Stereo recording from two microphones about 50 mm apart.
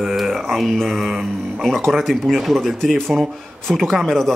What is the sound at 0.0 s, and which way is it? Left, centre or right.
Speech, centre.